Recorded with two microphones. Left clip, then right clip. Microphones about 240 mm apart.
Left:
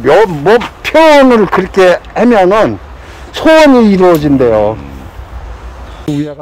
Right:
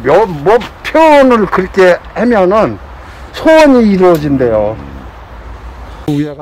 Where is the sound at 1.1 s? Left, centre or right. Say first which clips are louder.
Left 1 dB; left.